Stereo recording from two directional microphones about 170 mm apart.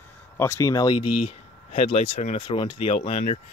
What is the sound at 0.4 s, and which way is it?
Speech, 15° left (ahead or behind).